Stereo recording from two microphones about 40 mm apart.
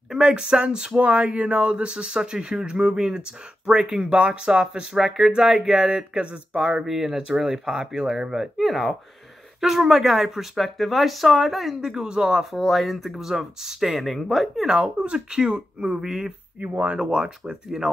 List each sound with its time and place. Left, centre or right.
0.2 s speech: centre
0.9 s speech: right
4.9 s speech: centre
6.1 s speech: right
6.8 s speech: centre
8.5 s speech: centre
11.8 s speech: centre
12.6 s speech: centre
15.0 s speech: right
16.6 s speech: right
17.1 s speech: right